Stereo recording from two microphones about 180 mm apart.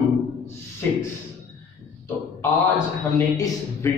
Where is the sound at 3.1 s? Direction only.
20° left (ahead or behind).